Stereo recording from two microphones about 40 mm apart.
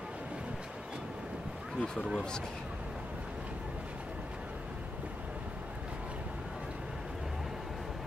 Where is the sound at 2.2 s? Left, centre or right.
Centre.